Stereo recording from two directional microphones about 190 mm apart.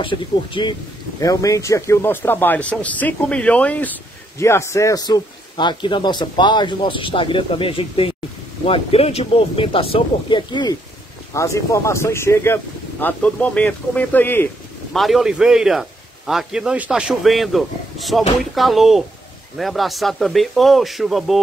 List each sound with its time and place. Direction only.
0.0 s a man's voice: 25° left (ahead or behind); by 15.0 s 10° left (ahead or behind)
15.0 s a man's voice: centre (ahead or behind)